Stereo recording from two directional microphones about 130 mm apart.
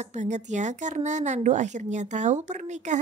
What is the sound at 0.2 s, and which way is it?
A woman's voice, 65° right (ahead or behind).